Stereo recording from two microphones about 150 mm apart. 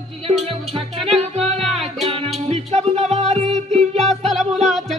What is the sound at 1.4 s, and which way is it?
Music, 45° right (ahead or behind).